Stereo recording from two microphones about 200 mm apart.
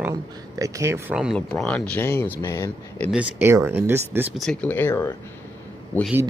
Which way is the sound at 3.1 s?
10° right (ahead or behind).